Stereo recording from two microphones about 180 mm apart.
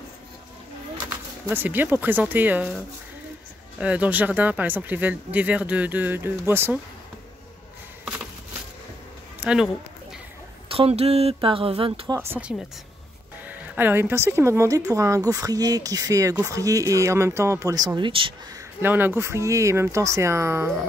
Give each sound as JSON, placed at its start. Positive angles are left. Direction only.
{"t": 1.5, "sound": "speech", "side_deg": -10}
{"t": 3.8, "sound": "speech", "side_deg": -10}
{"t": 9.4, "sound": "speech", "side_deg": -5}
{"t": 10.7, "sound": "speech", "side_deg": -35}
{"t": 12.1, "sound": "speech", "side_deg": -15}
{"t": 18.8, "sound": "speech", "side_deg": -10}